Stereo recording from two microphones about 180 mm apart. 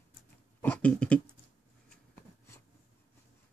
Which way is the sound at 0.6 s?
10° left (ahead or behind).